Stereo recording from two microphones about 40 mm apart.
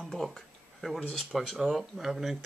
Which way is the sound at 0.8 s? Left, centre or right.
Centre.